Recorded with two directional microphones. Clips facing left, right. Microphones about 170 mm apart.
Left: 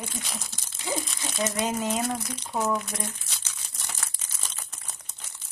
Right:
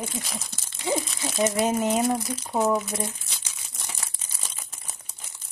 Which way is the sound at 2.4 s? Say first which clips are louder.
Right 4 dB; 5° right (ahead or behind).